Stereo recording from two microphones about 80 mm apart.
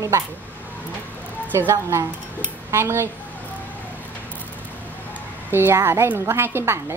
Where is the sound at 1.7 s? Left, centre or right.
Right.